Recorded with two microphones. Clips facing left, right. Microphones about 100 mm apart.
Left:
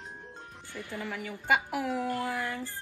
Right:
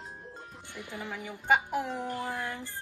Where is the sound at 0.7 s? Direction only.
15° right (ahead or behind).